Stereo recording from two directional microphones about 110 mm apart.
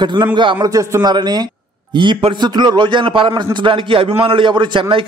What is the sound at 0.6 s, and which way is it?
A man's voice, 30° right (ahead or behind).